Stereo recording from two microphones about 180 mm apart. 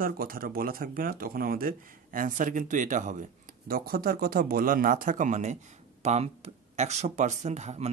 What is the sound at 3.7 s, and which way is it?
Speech, 55° right (ahead or behind).